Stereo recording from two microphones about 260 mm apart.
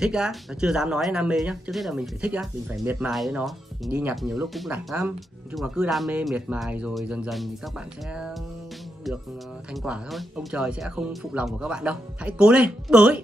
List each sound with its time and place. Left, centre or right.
0.0 s speech: centre
9.8 s speech: centre